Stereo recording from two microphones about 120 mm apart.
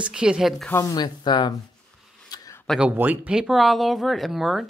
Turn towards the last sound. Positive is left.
turn(degrees=0)  # may be behind; listen again after turning